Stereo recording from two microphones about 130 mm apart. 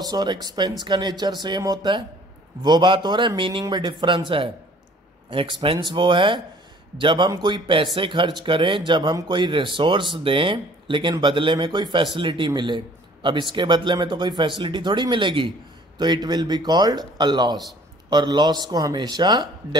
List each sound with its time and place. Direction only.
0.0 s speech: 30° right (ahead or behind)